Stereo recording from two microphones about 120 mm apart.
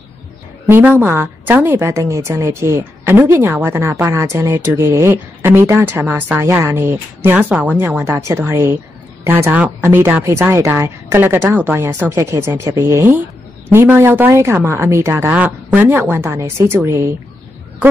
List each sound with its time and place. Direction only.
0.7 s a woman's voice: 15° right (ahead or behind)